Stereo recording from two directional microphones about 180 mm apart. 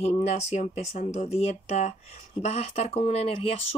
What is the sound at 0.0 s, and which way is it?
Speech, 40° left (ahead or behind).